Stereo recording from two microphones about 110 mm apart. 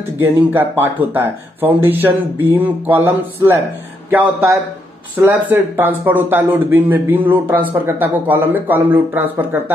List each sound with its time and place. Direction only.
0.5 s speech: 15° right (ahead or behind)